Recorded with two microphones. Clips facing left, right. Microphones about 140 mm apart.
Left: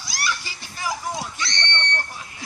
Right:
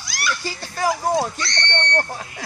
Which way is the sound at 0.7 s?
35° right (ahead or behind).